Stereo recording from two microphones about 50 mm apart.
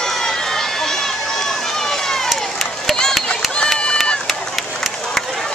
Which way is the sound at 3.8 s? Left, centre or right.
Centre.